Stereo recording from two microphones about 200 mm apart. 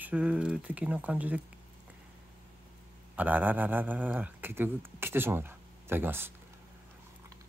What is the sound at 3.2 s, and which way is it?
Speech, 10° right (ahead or behind).